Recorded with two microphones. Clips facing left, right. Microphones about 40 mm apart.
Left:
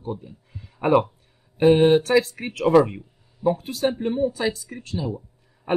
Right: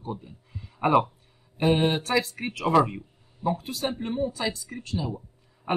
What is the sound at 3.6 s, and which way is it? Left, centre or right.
Speech, left.